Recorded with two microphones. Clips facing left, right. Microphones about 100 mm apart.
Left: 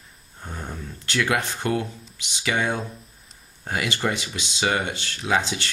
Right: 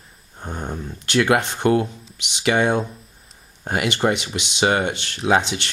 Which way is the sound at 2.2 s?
65° right (ahead or behind).